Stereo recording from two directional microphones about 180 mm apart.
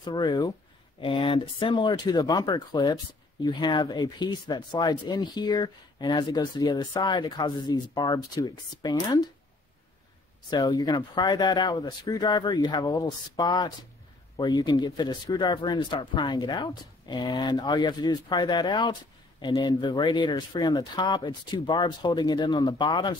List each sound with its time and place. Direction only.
0.0 s speech: 25° left (ahead or behind)
10.5 s speech: 20° left (ahead or behind)